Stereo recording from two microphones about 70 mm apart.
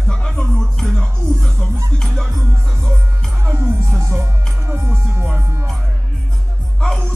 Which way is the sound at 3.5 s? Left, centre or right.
Right.